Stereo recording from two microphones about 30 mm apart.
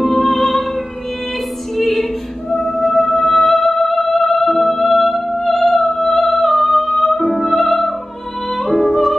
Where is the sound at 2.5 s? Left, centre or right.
Centre.